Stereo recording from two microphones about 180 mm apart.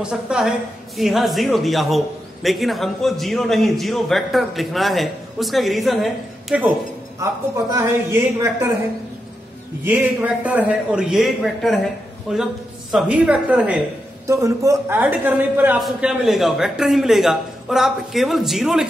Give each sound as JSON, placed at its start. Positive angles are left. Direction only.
{"t": 0.0, "sound": "speech", "side_deg": -5}
{"t": 7.2, "sound": "a man's voice", "side_deg": -15}
{"t": 9.8, "sound": "a man's voice", "side_deg": -10}
{"t": 12.9, "sound": "a man's voice", "side_deg": -5}